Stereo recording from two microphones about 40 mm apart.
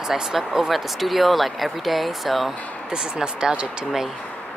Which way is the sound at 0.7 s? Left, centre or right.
Centre.